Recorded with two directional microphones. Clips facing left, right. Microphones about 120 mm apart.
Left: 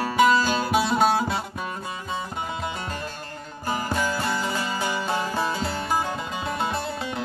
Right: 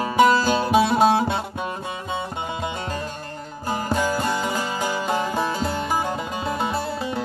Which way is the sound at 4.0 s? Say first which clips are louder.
Right 3 dB; 15° right (ahead or behind).